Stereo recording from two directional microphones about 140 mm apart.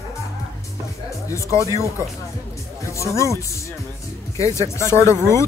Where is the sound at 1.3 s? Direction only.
20° left (ahead or behind).